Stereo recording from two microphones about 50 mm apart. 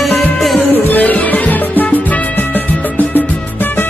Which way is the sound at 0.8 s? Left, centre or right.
Left.